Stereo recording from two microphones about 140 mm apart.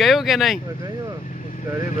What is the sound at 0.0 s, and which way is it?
Speech, centre (ahead or behind).